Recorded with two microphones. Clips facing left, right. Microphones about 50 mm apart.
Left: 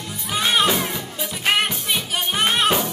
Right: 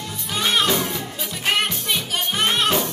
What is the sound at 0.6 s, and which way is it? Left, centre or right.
Music, centre.